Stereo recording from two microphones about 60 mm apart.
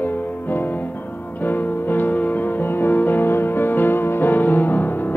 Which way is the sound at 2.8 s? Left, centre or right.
Left.